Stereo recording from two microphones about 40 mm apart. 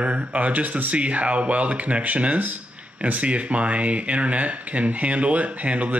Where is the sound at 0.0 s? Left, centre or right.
Right.